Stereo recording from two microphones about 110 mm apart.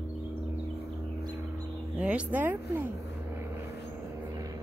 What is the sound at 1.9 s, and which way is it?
Vehicle, 10° right (ahead or behind).